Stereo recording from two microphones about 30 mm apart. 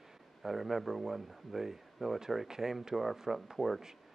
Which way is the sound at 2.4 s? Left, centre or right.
Centre.